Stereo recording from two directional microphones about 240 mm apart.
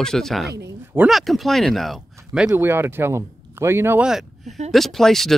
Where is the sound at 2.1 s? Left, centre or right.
Centre.